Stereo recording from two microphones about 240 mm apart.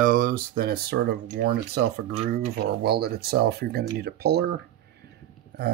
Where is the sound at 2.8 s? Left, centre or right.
Right.